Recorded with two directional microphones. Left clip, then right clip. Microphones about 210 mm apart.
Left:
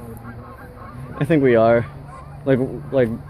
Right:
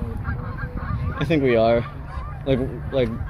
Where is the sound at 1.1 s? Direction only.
30° left (ahead or behind).